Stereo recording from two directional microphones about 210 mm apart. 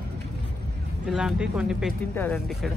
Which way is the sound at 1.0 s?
5° right (ahead or behind).